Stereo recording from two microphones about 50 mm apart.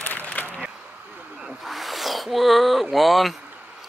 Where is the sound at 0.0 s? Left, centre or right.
Left.